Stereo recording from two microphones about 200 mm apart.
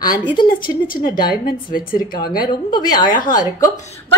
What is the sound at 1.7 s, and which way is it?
A woman's voice, 45° left (ahead or behind).